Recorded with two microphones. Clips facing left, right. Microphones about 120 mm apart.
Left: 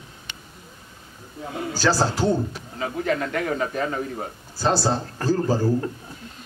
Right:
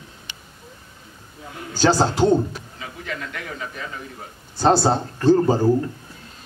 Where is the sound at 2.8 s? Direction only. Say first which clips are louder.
Left 9 dB; 45° left (ahead or behind).